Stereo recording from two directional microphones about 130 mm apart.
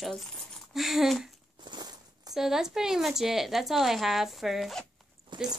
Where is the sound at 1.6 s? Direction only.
35° right (ahead or behind).